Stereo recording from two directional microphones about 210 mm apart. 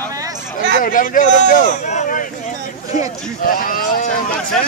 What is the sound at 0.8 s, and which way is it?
A man's voice, 40° left (ahead or behind).